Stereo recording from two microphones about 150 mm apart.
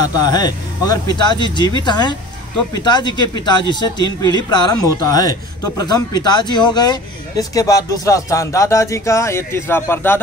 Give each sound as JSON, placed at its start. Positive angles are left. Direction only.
{"t": 0.0, "sound": "a man's voice", "side_deg": 25}